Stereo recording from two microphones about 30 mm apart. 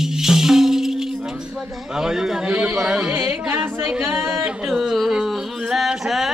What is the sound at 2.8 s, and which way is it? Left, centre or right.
Carnatic music, right.